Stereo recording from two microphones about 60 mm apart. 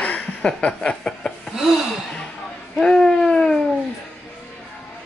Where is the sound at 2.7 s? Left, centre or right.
Centre.